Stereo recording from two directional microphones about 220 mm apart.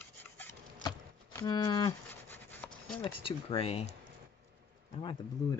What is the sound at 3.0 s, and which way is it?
Speech, 25° left (ahead or behind).